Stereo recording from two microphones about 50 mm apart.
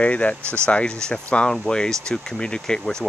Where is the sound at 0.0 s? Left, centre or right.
Left.